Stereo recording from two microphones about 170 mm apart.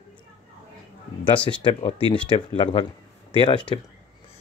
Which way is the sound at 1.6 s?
35° left (ahead or behind).